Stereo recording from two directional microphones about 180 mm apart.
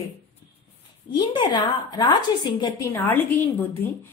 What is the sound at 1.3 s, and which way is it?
A woman's voice, 25° left (ahead or behind).